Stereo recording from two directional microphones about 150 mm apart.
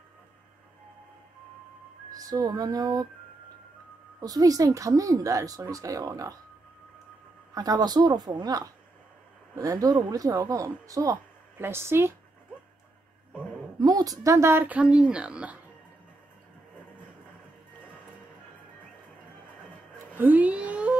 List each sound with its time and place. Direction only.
2.1 s speech: 25° right (ahead or behind)
4.2 s speech: 25° right (ahead or behind)
7.5 s speech: 25° right (ahead or behind)
13.7 s a woman's voice: 25° right (ahead or behind); by 15.6 s 10° right (ahead or behind)
20.2 s a sound: 10° right (ahead or behind)